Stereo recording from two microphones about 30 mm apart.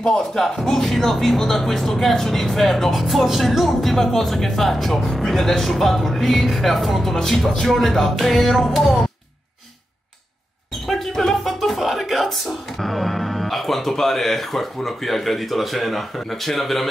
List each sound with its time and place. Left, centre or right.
0.0 s speech: centre
0.7 s speech: centre
10.9 s music: centre
12.8 s speech: centre